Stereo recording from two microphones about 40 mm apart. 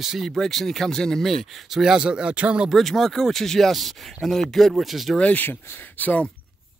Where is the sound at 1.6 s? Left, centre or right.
Centre.